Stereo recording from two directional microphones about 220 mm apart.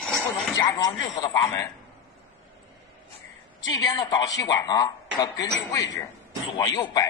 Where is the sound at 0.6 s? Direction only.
15° left (ahead or behind).